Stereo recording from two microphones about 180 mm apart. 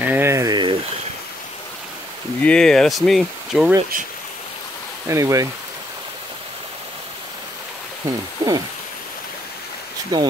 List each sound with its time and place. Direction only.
0.0 s a sound: 10° right (ahead or behind)
2.4 s speech: 5° left (ahead or behind)
5.0 s speech: 15° right (ahead or behind)
8.4 s speech: 20° right (ahead or behind)
10.1 s speech: 20° right (ahead or behind)